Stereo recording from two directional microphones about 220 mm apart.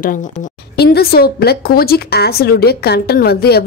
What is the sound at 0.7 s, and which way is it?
A woman's voice, 45° left (ahead or behind).